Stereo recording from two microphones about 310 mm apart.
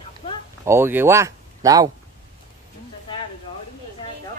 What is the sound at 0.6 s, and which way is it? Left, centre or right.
Speech, centre.